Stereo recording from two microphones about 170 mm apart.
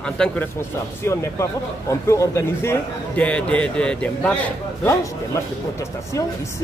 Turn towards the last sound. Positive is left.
turn(degrees=20)  # may be behind; listen again after turning